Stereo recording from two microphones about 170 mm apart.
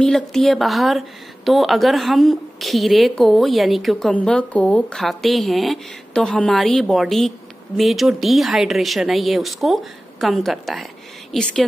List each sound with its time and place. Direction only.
0.0 s speech: centre (ahead or behind)